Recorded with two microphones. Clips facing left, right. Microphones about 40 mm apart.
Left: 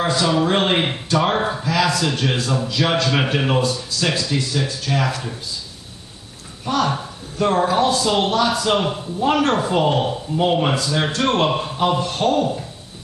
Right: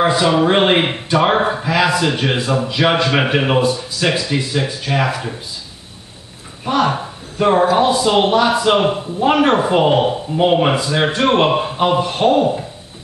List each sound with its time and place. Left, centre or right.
0.0 s a man's voice: right
6.6 s a man's voice: right